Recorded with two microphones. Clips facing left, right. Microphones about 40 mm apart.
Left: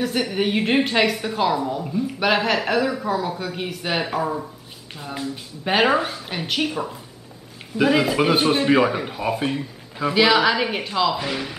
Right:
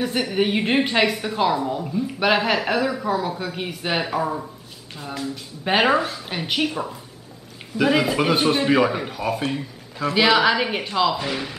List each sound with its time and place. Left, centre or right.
0.0 s a woman's voice: centre
5.6 s a woman's voice: centre
5.9 s speech: centre
6.2 s a woman's voice: centre
10.1 s a woman's voice: centre